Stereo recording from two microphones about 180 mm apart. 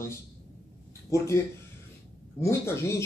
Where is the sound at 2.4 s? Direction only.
15° left (ahead or behind).